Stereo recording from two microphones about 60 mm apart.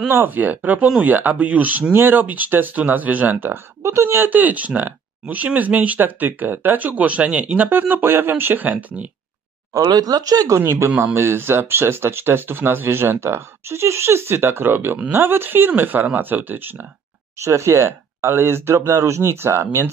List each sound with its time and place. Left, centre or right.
0.1 s speech: right
3.8 s speech: right
4.3 s speech: right
9.8 s speech: right
10.6 s speech: right
11.1 s speech: right
17.4 s speech: right